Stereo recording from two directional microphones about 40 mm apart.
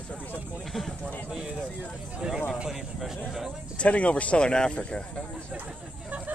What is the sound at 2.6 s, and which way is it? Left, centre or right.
Speech, centre.